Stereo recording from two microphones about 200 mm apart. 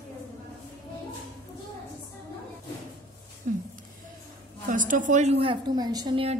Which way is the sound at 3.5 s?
40° right (ahead or behind).